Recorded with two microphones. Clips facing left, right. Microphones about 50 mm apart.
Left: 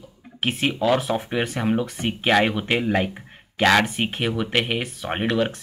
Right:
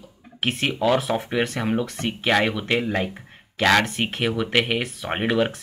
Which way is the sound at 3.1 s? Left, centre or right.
Centre.